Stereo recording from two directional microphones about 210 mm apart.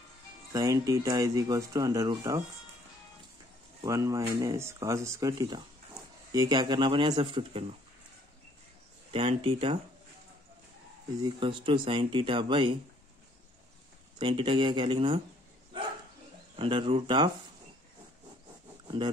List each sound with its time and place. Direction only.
0.5 s speech: 15° right (ahead or behind)
3.8 s speech: 15° right (ahead or behind)
9.1 s speech: 25° right (ahead or behind)
11.2 s speech: 25° right (ahead or behind)
14.1 s speech: 20° right (ahead or behind)
16.5 s speech: 25° right (ahead or behind)